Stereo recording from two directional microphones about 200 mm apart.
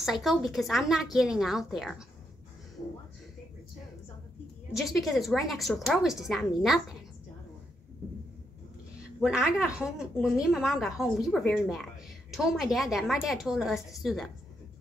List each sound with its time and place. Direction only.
0.0 s a woman's voice: centre (ahead or behind)
4.7 s a woman's voice: centre (ahead or behind)
9.2 s a woman's voice: 5° right (ahead or behind)